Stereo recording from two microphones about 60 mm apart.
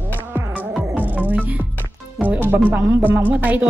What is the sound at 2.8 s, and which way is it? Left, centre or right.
Speech, right.